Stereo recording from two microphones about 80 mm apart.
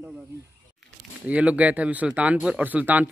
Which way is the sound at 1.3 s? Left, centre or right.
Centre.